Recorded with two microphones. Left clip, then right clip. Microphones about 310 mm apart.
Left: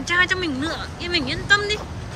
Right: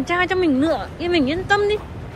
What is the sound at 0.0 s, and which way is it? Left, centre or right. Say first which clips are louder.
Speech: right 1 dB; centre.